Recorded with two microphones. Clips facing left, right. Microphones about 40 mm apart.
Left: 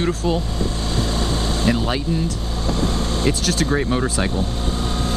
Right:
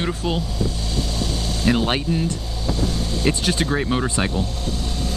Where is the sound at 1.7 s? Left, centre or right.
Right.